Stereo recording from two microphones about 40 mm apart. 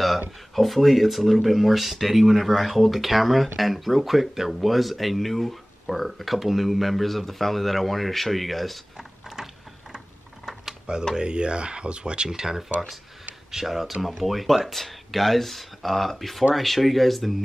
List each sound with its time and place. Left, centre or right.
0.6 s speech: centre
9.9 s a sound: centre
11.1 s speech: right; by 17.4 s centre